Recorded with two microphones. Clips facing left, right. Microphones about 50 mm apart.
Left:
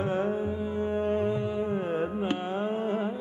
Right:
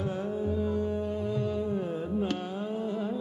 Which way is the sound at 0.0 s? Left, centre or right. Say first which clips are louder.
Left 4 dB; left.